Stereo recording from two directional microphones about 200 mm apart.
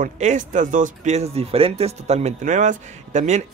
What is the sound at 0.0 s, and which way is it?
Speech, 40° right (ahead or behind).